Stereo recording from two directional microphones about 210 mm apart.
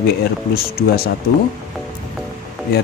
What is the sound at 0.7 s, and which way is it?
Speech, 45° left (ahead or behind).